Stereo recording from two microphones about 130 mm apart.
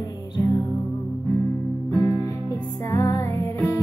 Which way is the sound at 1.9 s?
25° left (ahead or behind).